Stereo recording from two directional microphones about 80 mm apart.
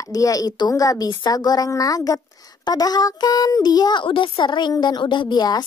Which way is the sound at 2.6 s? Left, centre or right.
Left.